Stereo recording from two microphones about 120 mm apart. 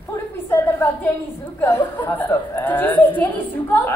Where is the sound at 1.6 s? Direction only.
20° left (ahead or behind).